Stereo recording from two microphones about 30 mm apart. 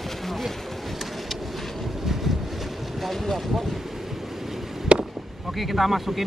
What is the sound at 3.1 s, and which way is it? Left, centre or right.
Speech, centre.